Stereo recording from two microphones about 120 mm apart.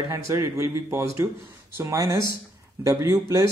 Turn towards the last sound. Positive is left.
turn(degrees=-25)  # may be behind; listen again after turning